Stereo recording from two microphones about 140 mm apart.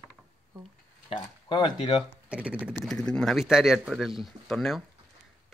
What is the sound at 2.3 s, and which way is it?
Speech, 10° right (ahead or behind).